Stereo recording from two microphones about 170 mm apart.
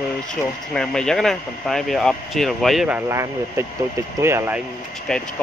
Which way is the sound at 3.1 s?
15° right (ahead or behind).